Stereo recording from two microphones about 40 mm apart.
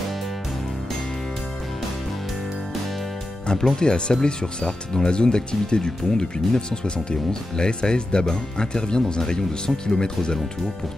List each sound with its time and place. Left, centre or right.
3.4 s speech: centre